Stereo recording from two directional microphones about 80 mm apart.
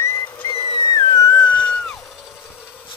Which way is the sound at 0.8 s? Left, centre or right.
Left.